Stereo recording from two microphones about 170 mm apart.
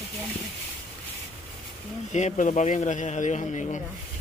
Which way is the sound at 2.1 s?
45° left (ahead or behind).